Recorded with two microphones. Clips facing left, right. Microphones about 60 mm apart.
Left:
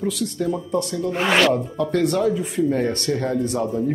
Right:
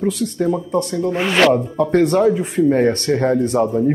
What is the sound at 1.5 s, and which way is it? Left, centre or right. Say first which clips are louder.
Speech: right 5 dB; right.